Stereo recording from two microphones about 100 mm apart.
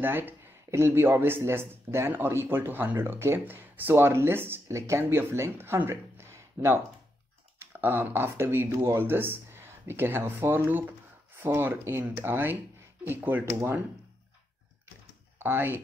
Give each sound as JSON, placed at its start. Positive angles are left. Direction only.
{"t": 0.0, "sound": "speech", "side_deg": -20}
{"t": 15.3, "sound": "speech", "side_deg": -20}